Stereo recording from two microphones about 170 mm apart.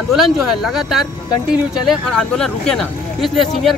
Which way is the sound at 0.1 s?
Centre (ahead or behind).